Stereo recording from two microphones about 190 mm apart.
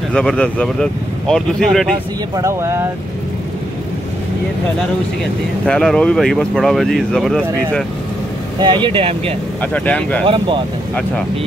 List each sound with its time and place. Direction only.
0.1 s speech: 5° left (ahead or behind)
2.3 s speech: 15° right (ahead or behind)
5.7 s speech: 5° left (ahead or behind)
8.5 s speech: 25° right (ahead or behind)
9.6 s speech: 5° left (ahead or behind)
10.2 s speech: 25° right (ahead or behind)